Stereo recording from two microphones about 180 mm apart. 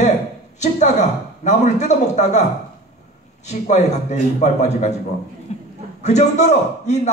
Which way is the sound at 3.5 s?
40° left (ahead or behind).